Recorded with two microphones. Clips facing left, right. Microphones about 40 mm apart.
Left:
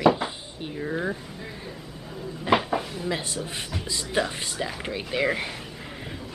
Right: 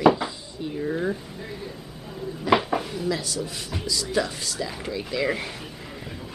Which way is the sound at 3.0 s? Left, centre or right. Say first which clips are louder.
Right 2 dB; left.